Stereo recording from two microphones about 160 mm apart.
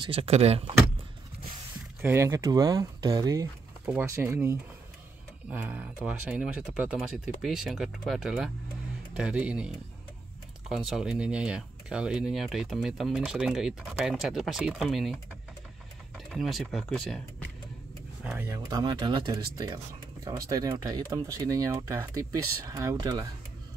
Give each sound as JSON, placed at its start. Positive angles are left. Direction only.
{"t": 0.0, "sound": "speech", "side_deg": -35}
{"t": 2.0, "sound": "speech", "side_deg": -15}
{"t": 16.3, "sound": "speech", "side_deg": 0}
{"t": 18.2, "sound": "speech", "side_deg": -15}